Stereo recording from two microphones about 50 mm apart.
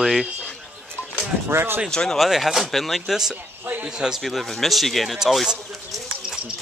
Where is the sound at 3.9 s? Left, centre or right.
Centre.